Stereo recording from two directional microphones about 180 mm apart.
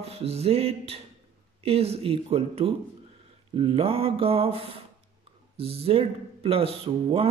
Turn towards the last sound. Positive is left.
turn(degrees=-30)  # may be behind; listen again after turning